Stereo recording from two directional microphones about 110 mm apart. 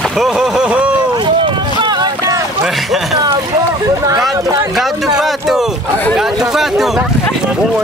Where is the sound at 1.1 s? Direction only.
45° right (ahead or behind).